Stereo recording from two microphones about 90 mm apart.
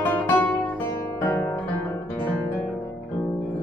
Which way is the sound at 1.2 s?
20° left (ahead or behind).